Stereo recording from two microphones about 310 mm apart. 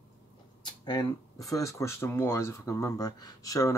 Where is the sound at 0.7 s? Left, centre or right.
Centre.